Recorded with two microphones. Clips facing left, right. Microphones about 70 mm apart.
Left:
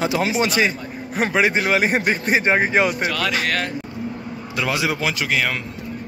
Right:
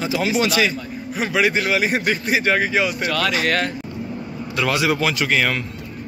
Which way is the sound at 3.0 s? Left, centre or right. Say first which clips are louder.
Right 1 dB; centre.